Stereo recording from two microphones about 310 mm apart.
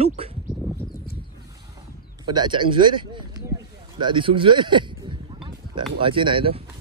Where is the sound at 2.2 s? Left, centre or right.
Centre.